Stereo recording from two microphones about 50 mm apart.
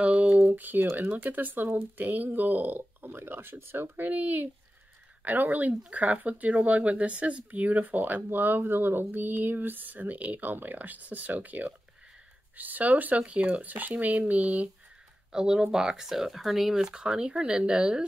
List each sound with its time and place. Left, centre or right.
0.0 s a sound: right
0.9 s speech: right
15.3 s speech: centre